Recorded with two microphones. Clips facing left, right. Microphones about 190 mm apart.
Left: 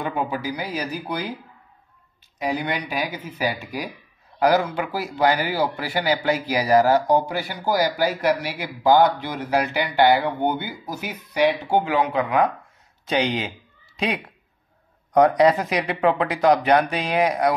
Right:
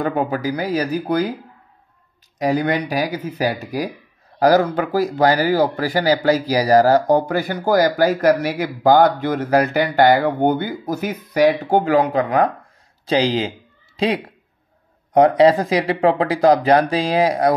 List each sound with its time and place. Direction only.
0.0 s speech: 40° right (ahead or behind)
2.3 s speech: 40° right (ahead or behind)